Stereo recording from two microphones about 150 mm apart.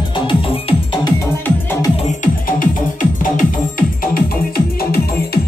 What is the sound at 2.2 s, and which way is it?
Music, 65° left (ahead or behind).